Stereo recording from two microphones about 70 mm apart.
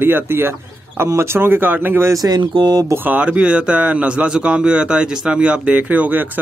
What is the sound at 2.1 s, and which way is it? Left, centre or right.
Speech, right.